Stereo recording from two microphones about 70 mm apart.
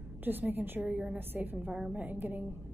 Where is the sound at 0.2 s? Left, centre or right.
Right.